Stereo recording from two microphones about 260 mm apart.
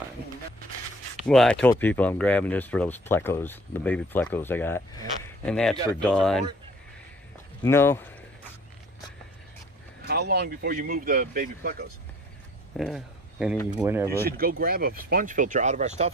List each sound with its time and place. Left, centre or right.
1.2 s speech: centre
7.6 s speech: centre
10.0 s speech: right
12.7 s speech: centre
14.2 s speech: right